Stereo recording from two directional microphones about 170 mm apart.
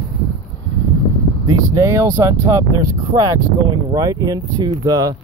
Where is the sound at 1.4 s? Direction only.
20° right (ahead or behind).